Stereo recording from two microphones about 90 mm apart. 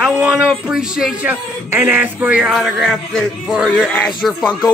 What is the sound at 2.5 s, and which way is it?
Speech, centre (ahead or behind).